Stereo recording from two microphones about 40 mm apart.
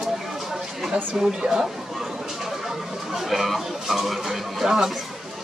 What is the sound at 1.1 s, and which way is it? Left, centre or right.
Speech, right.